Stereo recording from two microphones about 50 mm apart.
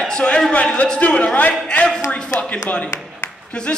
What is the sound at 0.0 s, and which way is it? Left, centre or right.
Speech, centre.